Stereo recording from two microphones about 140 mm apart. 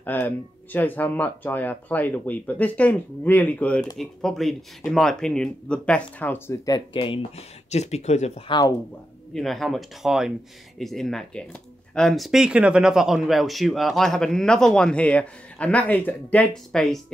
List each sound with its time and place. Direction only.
0.0 s speech: 15° left (ahead or behind)
6.9 s speech: 35° left (ahead or behind)
7.2 s speech: 50° left (ahead or behind)
8.5 s speech: 30° left (ahead or behind)
9.3 s speech: centre (ahead or behind)